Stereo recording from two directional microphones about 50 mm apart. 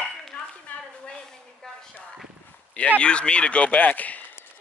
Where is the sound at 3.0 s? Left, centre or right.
Left.